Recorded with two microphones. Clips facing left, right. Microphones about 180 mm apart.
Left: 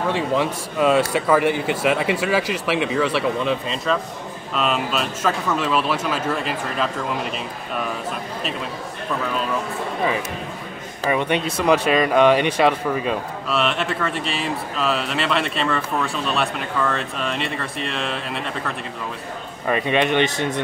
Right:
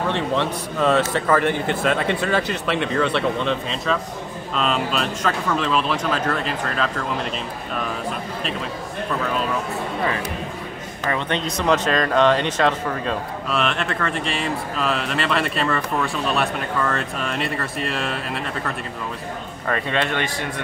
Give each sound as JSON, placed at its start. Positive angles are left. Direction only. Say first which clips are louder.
{"t": 0.1, "sound": "speech", "louder": "left 1 dB", "side_deg": 10}
{"t": 11.1, "sound": "speech", "louder": "left 3 dB", "side_deg": 10}
{"t": 19.7, "sound": "speech", "louder": "left 4 dB", "side_deg": 15}